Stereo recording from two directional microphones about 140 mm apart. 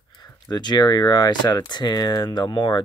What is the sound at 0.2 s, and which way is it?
Speech, 30° left (ahead or behind).